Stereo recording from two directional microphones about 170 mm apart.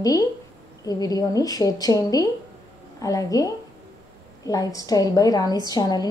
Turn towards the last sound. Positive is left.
turn(degrees=25)  # may be behind; listen again after turning